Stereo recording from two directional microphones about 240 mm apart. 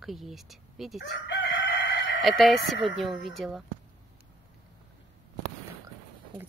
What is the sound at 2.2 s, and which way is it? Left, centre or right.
Speech, centre.